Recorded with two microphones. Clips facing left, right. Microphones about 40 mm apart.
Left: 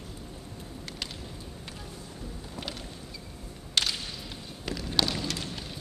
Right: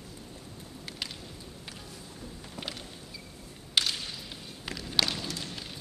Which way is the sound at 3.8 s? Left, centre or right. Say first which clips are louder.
Even; centre.